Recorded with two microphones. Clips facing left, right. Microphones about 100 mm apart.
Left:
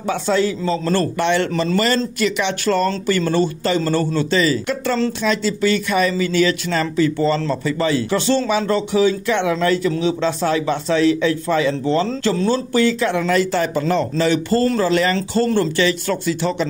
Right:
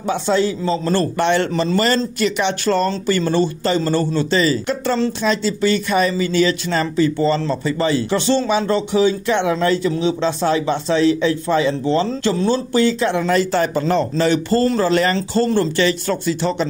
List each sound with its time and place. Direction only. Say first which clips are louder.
0.0 s speech: right 1 dB; 25° right (ahead or behind)
1.1 s speech: right 1 dB; 35° right (ahead or behind)
1.5 s speech: right 1 dB; 20° right (ahead or behind)
2.1 s speech: right 1 dB; 35° right (ahead or behind)